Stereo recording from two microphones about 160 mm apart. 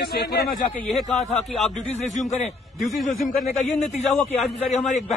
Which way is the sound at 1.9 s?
45° left (ahead or behind).